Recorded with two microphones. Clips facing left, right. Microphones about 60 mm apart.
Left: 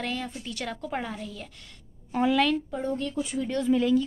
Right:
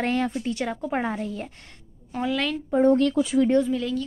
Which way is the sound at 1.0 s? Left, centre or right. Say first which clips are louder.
Right 7 dB; right.